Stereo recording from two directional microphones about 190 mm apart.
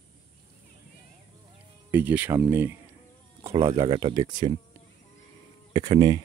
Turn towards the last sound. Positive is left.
turn(degrees=-20)  # may be behind; listen again after turning